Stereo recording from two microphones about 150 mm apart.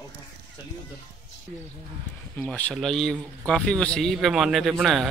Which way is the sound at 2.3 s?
10° left (ahead or behind).